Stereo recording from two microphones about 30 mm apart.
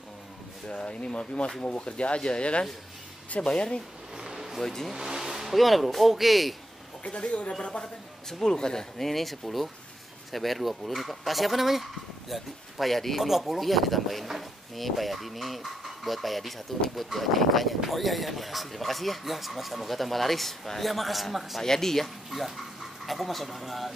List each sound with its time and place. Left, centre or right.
0.7 s speech: left
4.3 s a sound: centre
4.6 s speech: centre
4.9 s vehicle: centre
5.5 s speech: centre
7.1 s speech: left
7.8 s speech: centre
8.9 s speech: centre
21.5 s speech: centre